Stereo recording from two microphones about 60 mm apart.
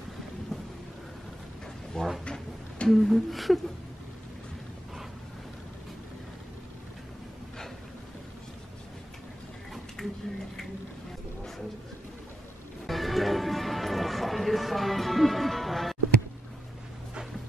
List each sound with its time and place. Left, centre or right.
0.5 s thunder: centre
2.2 s drawer open or close: centre
2.9 s a sound: centre
10.0 s music: centre
12.8 s music: centre